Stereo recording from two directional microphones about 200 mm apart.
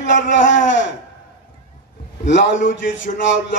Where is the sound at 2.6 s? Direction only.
40° left (ahead or behind).